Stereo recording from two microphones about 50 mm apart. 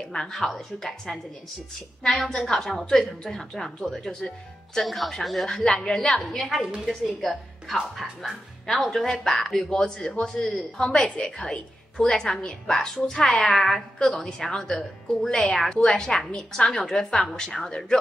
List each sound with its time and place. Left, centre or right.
0.0 s a woman's voice: centre
2.1 s a woman's voice: centre
5.6 s a woman's voice: centre